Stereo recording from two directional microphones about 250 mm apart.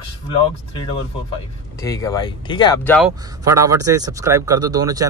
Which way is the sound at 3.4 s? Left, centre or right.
Centre.